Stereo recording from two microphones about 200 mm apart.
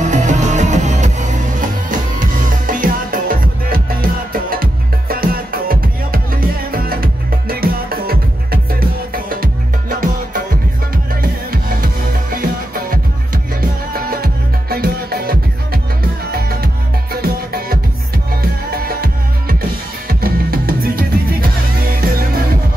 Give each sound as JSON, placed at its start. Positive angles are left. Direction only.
{"t": 0.0, "sound": "music", "side_deg": -40}
{"t": 11.5, "sound": "music", "side_deg": -45}
{"t": 20.1, "sound": "music", "side_deg": -50}